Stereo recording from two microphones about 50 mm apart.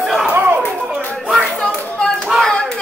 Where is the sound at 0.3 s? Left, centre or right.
Right.